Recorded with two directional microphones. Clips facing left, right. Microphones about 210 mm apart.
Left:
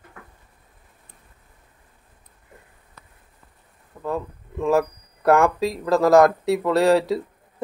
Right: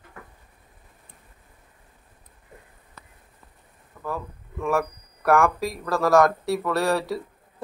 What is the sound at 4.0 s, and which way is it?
Speech, 20° left (ahead or behind).